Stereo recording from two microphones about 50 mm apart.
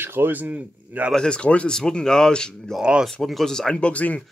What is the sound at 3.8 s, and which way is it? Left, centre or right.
Speech, left.